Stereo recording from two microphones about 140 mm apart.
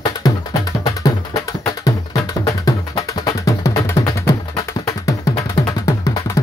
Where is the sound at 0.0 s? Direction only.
30° left (ahead or behind).